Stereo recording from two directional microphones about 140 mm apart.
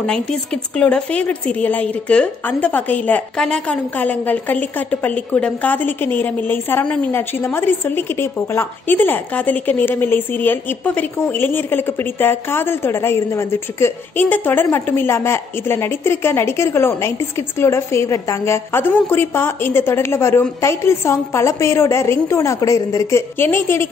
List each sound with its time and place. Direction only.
0.0 s speech: 5° left (ahead or behind)